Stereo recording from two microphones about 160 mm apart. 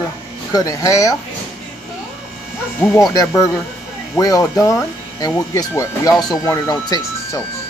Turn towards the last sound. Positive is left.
turn(degrees=25)  # may be behind; listen again after turning